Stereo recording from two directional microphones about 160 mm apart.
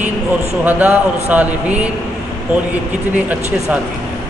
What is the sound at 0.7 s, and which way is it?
A man's voice, 10° right (ahead or behind).